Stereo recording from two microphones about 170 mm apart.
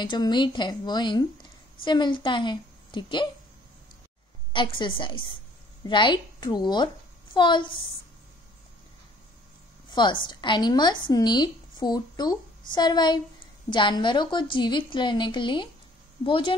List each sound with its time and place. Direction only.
0.0 s a woman's voice: 25° left (ahead or behind)
4.5 s a woman's voice: 30° left (ahead or behind)
9.8 s a woman's voice: 25° left (ahead or behind)